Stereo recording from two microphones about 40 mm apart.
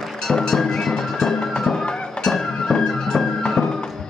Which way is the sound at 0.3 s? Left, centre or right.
Centre.